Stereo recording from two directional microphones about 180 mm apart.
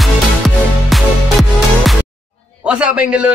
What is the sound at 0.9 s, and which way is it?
Music, centre (ahead or behind).